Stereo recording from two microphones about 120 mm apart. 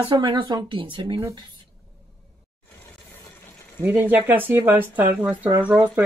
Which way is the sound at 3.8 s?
15° right (ahead or behind).